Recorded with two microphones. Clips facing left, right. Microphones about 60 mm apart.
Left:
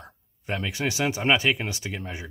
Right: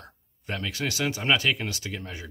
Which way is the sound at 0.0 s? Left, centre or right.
Centre.